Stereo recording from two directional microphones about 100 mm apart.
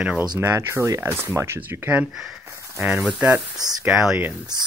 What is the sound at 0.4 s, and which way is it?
Speech, 25° right (ahead or behind).